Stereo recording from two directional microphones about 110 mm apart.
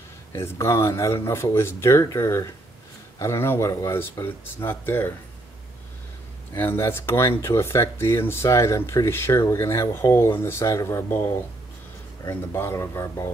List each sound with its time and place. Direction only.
0.3 s speech: 25° left (ahead or behind)
6.5 s speech: 20° left (ahead or behind)
12.3 s speech: 20° left (ahead or behind)